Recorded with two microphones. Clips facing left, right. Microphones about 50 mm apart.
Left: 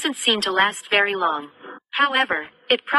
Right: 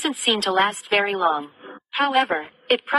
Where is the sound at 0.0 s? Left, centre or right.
Left.